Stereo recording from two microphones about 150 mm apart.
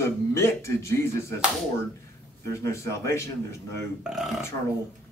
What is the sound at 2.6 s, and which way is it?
Speech, 20° left (ahead or behind).